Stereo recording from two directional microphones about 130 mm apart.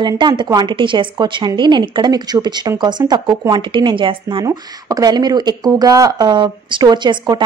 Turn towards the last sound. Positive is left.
turn(degrees=-35)  # may be behind; listen again after turning